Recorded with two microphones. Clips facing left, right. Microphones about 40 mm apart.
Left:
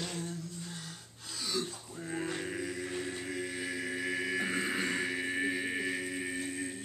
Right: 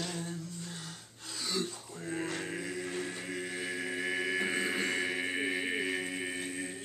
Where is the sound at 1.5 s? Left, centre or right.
Centre.